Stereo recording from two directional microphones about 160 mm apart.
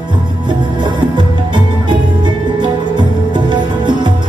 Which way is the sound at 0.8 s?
30° right (ahead or behind).